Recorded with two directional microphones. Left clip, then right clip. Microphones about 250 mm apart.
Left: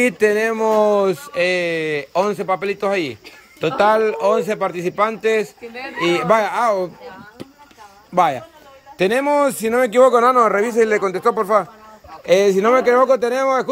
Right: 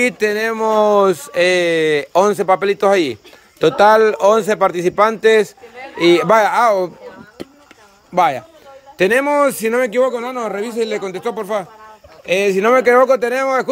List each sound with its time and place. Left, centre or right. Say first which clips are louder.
0.0 s speech: even; centre
8.1 s a man's voice: right 2 dB; centre